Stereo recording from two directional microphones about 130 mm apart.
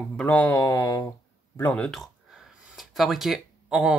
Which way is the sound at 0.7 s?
30° left (ahead or behind).